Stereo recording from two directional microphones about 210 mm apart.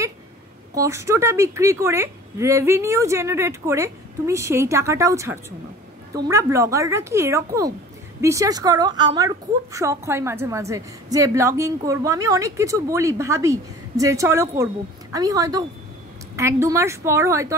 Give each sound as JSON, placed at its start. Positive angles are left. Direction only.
{"t": 0.7, "sound": "a woman's voice", "side_deg": -15}